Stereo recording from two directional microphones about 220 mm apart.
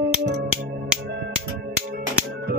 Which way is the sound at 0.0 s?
45° right (ahead or behind).